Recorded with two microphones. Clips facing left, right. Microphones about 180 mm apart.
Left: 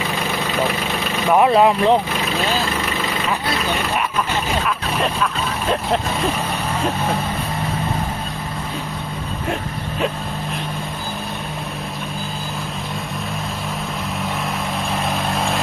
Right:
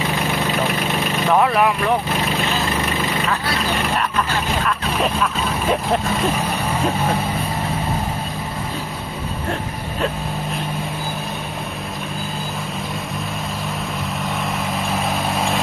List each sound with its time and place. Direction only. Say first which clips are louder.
1.5 s speech: left 4 dB; 25° left (ahead or behind)
4.6 s speech: right 1 dB; centre (ahead or behind)
14.9 s vehicle: even; centre (ahead or behind)